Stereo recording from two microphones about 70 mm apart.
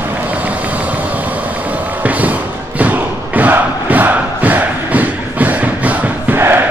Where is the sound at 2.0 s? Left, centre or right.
Right.